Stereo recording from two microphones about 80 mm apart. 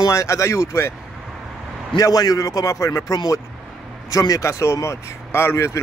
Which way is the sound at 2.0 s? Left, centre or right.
Left.